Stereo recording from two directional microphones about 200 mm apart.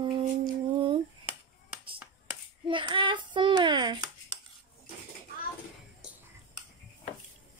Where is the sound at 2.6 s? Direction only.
25° right (ahead or behind).